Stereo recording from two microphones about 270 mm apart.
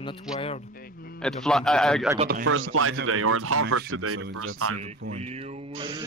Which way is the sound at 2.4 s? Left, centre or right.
Right.